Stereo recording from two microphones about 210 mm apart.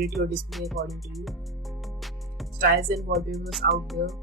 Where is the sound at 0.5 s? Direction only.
Centre (ahead or behind).